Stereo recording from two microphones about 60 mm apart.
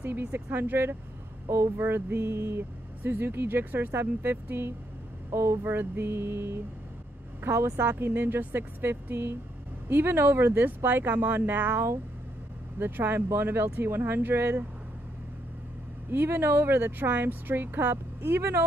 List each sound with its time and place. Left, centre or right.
0.0 s speech: right
1.5 s a sound: right
3.0 s speech: right
5.3 s a sound: right
7.4 s speech: right
16.1 s speech: right